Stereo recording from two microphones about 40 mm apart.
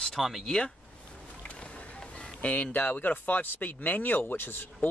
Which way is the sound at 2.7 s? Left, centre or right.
Left.